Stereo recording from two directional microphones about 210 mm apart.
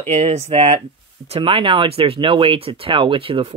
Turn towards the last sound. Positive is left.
turn(degrees=-25)  # may be behind; listen again after turning